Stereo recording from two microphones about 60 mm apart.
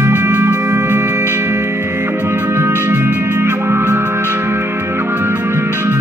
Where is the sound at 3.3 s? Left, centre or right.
Right.